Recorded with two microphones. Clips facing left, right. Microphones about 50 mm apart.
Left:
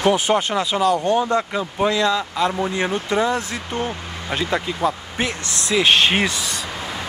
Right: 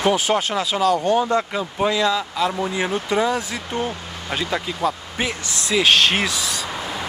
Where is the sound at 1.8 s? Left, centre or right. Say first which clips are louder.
Left 1 dB; centre.